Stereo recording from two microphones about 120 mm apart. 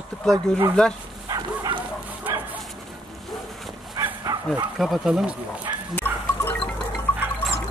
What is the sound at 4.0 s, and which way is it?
Bow-wow, 25° right (ahead or behind).